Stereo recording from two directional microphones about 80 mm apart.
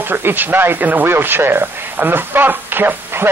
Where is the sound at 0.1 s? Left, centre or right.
Right.